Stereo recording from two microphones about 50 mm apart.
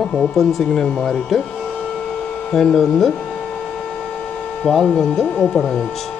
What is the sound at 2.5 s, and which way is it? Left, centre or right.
Speech, centre.